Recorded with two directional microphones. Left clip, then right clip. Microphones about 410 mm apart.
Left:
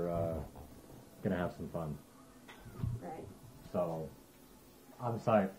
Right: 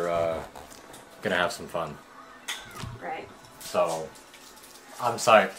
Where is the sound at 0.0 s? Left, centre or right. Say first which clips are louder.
Right 10 dB; centre.